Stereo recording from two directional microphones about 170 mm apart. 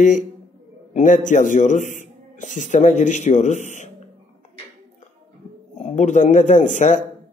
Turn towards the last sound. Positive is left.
turn(degrees=45)  # may be behind; listen again after turning